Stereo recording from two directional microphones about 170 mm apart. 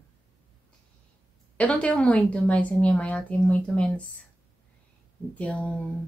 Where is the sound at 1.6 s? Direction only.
5° left (ahead or behind).